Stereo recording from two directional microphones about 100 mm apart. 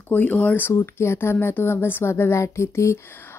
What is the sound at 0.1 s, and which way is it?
Speech, 15° left (ahead or behind).